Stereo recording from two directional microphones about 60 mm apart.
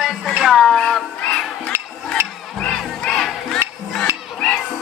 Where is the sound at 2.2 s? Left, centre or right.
Right.